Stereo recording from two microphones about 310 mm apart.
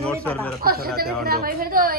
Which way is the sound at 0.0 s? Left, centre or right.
Centre.